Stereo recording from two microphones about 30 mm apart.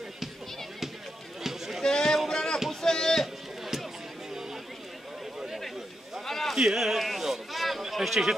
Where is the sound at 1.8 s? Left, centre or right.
Centre.